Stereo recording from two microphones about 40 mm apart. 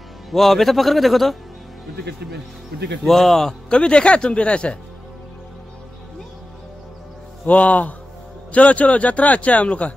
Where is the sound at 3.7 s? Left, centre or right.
Left.